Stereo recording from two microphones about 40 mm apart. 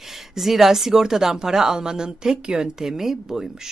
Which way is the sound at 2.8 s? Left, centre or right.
Centre.